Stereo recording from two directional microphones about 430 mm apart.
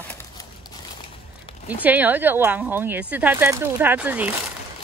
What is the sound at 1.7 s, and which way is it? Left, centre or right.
Speech, centre.